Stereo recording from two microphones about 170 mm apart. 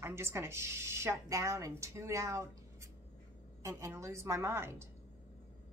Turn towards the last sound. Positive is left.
turn(degrees=-15)  # may be behind; listen again after turning